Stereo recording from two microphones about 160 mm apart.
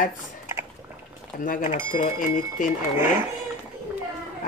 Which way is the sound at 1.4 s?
55° left (ahead or behind).